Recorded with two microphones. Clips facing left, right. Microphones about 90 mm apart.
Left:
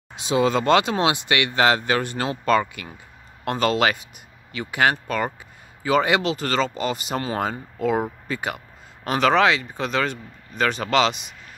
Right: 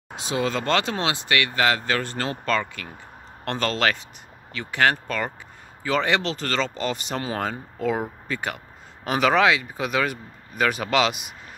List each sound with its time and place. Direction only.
0.2 s speech: 20° left (ahead or behind); by 11.2 s 5° right (ahead or behind)